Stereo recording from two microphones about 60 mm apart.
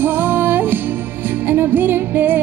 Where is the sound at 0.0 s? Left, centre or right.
Right.